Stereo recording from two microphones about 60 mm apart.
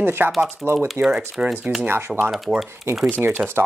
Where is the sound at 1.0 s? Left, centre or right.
Centre.